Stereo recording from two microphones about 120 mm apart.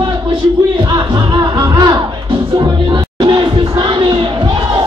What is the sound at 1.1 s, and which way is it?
Music, 35° right (ahead or behind).